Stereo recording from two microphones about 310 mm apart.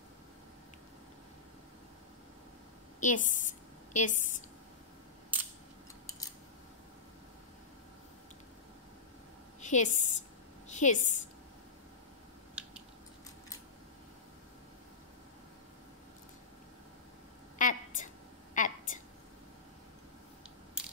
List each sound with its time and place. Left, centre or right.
3.0 s a woman's voice: left
5.3 s camera: centre
9.6 s a woman's voice: left
17.6 s a sound: left